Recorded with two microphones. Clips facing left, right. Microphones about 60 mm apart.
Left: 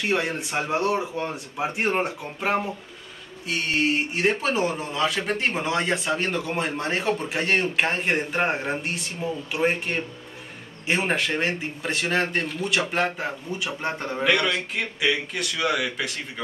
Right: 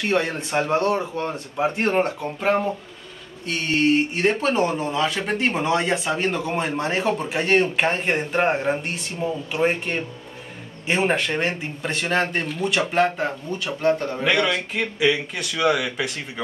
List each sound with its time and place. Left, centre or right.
0.0 s speech: centre
13.6 s a man's voice: centre
14.2 s speech: centre